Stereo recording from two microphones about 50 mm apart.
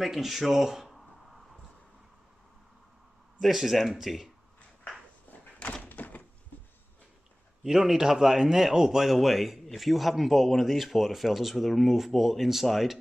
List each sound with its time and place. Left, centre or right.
0.0 s speech: centre
0.8 s a sound: centre
3.3 s speech: centre
5.6 s door: left
7.6 s speech: centre